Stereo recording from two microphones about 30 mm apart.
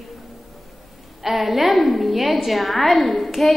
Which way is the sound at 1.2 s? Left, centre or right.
Centre.